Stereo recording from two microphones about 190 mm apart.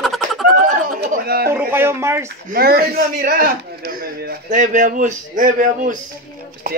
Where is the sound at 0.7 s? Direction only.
50° right (ahead or behind).